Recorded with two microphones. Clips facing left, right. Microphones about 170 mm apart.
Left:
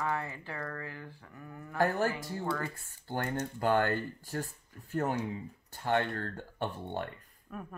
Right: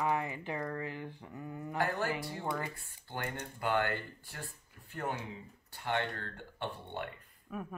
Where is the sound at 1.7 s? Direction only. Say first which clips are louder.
Left 5 dB; 45° left (ahead or behind).